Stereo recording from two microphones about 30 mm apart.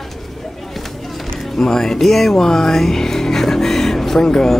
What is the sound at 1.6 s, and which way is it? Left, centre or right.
Speech, centre.